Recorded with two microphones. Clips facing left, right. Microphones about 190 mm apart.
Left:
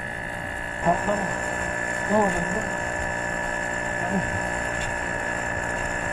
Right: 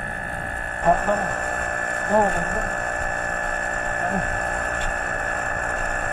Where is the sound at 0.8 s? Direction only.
60° right (ahead or behind).